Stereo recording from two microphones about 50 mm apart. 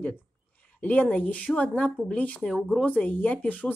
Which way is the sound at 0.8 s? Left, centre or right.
Left.